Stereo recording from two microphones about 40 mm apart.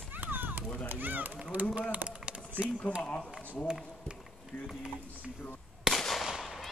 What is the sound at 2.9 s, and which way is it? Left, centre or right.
Speech, right.